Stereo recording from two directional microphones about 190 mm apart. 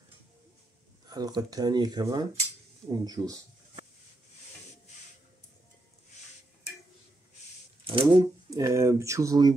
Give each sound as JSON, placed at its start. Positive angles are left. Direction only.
{"t": 1.0, "sound": "speech", "side_deg": -20}
{"t": 7.8, "sound": "speech", "side_deg": -30}